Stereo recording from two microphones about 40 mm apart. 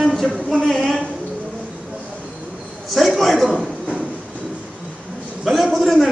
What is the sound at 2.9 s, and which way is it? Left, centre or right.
Speech, centre.